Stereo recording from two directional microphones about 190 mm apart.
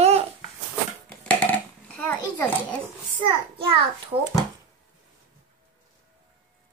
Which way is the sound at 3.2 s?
25° right (ahead or behind).